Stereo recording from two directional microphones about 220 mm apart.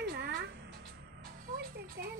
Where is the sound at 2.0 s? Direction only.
45° right (ahead or behind).